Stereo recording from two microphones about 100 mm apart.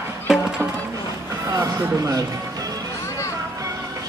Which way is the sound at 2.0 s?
35° right (ahead or behind).